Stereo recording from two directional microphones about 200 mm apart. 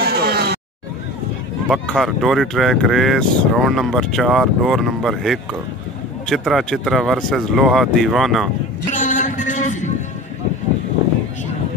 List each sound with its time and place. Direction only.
0.0 s music: 50° right (ahead or behind)
1.7 s speech: centre (ahead or behind)
8.9 s a sound: 40° left (ahead or behind)